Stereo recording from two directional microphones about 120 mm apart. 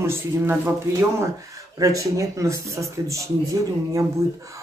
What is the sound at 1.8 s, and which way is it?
Speech, 25° right (ahead or behind).